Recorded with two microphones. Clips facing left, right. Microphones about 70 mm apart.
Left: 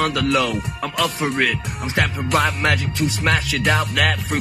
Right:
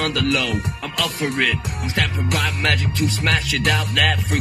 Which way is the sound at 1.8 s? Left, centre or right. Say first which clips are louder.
Left 2 dB; left.